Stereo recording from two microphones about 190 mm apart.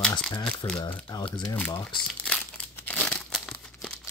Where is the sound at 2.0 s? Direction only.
5° left (ahead or behind).